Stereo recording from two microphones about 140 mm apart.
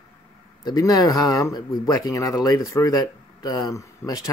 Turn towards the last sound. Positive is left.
turn(degrees=25)  # may be behind; listen again after turning